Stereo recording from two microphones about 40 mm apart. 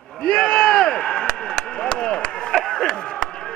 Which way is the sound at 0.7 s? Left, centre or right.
Centre.